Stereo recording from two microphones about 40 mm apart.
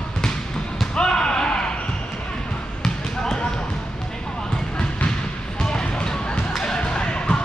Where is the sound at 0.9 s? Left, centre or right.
Left.